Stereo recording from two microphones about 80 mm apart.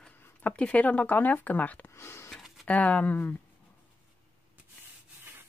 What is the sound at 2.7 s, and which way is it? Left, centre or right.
Speech, centre.